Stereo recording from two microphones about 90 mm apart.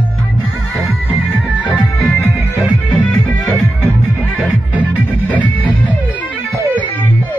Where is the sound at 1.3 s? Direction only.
15° left (ahead or behind).